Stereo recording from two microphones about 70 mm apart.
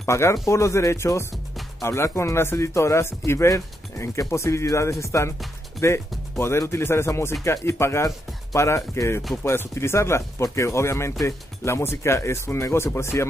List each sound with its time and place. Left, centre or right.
0.0 s speech: left